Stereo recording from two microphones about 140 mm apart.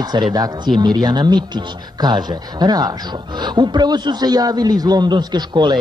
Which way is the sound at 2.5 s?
30° right (ahead or behind).